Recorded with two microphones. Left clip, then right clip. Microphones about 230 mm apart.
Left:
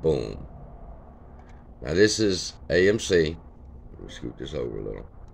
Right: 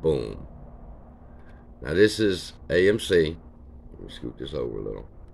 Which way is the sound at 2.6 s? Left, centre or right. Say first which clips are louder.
Even; centre.